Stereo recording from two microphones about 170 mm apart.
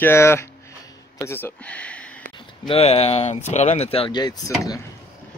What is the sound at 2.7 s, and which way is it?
Speech, 35° left (ahead or behind).